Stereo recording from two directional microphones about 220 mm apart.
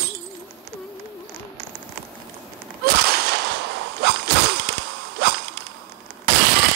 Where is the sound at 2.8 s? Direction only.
45° right (ahead or behind).